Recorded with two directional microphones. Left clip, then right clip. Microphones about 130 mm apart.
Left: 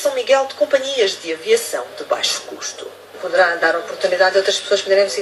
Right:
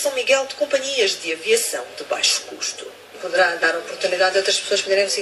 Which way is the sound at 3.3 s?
20° right (ahead or behind).